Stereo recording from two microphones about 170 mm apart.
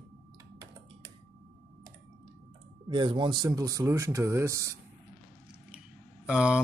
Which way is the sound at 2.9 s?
30° right (ahead or behind).